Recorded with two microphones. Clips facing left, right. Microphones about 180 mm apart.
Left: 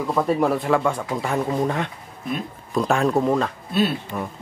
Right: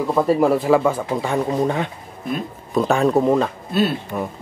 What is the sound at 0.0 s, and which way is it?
Speech, 5° right (ahead or behind).